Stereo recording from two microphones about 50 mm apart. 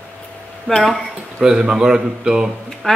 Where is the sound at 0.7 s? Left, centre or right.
Centre.